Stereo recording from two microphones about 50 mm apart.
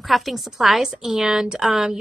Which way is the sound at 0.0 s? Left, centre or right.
Centre.